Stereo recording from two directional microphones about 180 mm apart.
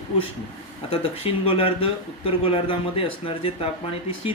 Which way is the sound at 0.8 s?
30° left (ahead or behind).